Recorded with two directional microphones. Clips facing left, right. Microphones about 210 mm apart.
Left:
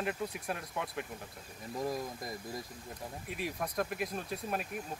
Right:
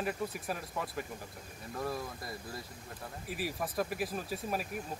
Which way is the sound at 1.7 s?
15° left (ahead or behind).